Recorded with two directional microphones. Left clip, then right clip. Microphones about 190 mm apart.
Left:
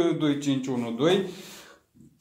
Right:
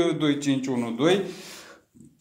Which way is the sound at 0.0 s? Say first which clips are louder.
Right 1 dB; 15° right (ahead or behind).